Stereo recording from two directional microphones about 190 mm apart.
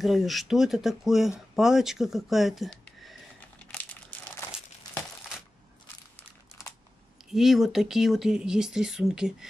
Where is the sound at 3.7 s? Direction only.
10° left (ahead or behind).